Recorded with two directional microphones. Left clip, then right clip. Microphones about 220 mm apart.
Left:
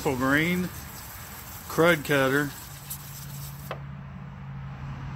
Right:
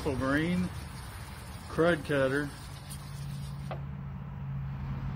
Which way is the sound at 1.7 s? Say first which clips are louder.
Left 6 dB; 55° left (ahead or behind).